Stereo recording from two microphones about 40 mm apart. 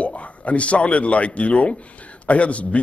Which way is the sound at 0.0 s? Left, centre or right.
Left.